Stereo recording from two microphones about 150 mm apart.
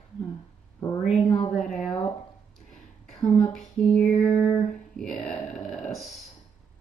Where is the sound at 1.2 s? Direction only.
40° left (ahead or behind).